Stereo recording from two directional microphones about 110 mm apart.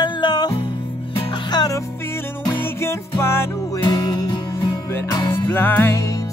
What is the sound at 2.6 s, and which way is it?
Music, 25° left (ahead or behind).